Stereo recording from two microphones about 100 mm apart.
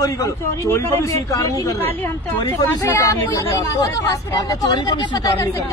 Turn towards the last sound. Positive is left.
turn(degrees=35)  # may be behind; listen again after turning